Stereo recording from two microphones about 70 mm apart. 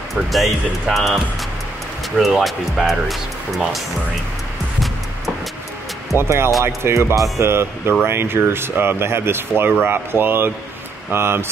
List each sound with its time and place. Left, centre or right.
0.1 s speech: centre
6.1 s speech: right